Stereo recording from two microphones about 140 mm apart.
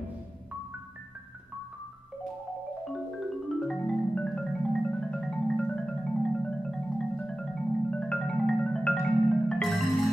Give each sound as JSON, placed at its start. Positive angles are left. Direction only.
{"t": 3.6, "sound": "marimba", "side_deg": 5}